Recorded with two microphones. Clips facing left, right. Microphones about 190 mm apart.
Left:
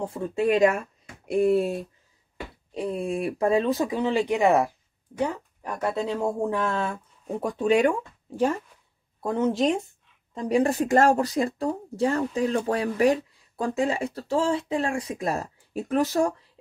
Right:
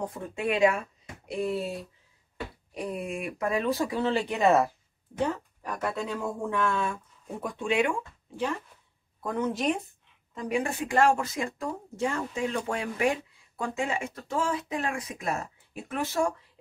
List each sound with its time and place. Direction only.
0.0 s speech: 30° left (ahead or behind)
1.2 s speech: 50° left (ahead or behind)
2.7 s speech: 25° left (ahead or behind)
9.2 s speech: 30° left (ahead or behind)